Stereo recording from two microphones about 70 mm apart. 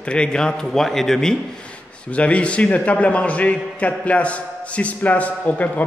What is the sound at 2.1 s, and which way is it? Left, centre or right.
A man's voice, centre.